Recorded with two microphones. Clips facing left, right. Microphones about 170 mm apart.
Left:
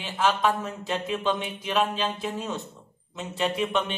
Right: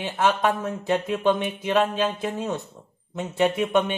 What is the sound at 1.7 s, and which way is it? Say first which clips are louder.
Speech: right 3 dB; 55° right (ahead or behind).